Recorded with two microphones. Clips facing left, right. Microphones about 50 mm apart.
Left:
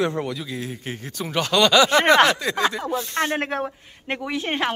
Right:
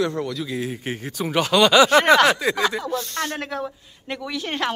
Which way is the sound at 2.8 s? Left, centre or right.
Centre.